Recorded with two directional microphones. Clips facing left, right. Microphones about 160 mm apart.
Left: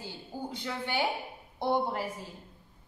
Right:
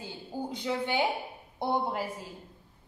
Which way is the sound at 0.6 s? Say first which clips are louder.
Right 3 dB; 20° right (ahead or behind).